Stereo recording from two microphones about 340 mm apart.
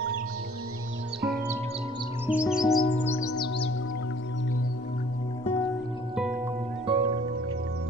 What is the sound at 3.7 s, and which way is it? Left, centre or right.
Music, left.